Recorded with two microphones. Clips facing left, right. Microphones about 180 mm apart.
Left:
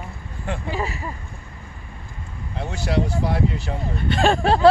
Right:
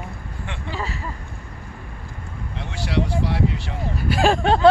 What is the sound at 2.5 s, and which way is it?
Speech, 45° left (ahead or behind).